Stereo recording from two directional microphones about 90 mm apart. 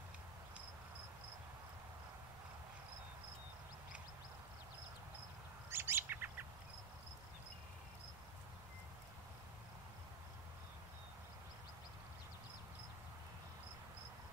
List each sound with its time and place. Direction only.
5.7 s bird: 25° right (ahead or behind)